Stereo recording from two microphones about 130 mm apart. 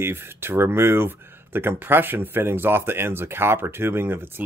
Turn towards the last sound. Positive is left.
turn(degrees=-15)  # may be behind; listen again after turning